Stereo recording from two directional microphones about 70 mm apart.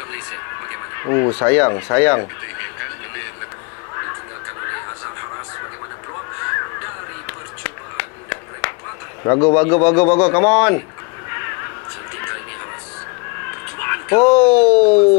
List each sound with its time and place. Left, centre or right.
0.1 s neigh: left
1.3 s speech: left
7.2 s a sound: left
9.2 s a man's voice: left
11.2 s a sound: left
13.7 s speech: left